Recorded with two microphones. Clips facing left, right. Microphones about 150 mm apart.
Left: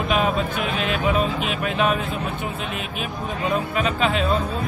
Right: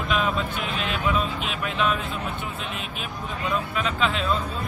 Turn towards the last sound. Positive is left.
turn(degrees=55)  # may be behind; listen again after turning